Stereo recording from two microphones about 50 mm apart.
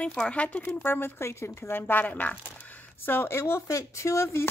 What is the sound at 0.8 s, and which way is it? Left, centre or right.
Speech, left.